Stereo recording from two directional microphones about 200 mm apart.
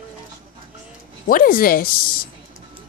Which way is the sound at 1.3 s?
45° left (ahead or behind).